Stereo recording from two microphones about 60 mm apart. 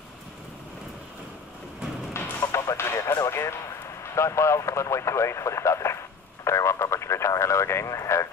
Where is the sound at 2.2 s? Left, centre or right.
Left.